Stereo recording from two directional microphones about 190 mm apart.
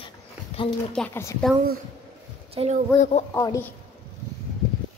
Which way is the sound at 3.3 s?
15° left (ahead or behind).